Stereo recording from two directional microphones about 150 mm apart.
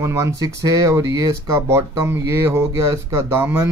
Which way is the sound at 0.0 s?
20° right (ahead or behind).